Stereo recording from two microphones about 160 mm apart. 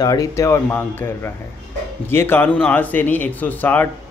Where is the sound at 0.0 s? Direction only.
20° left (ahead or behind).